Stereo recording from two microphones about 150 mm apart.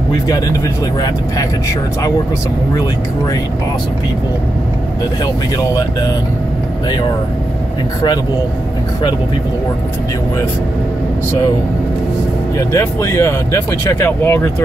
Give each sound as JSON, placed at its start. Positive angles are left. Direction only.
{"t": 0.1, "sound": "speech", "side_deg": 25}
{"t": 5.2, "sound": "speech", "side_deg": 25}
{"t": 12.5, "sound": "speech", "side_deg": 20}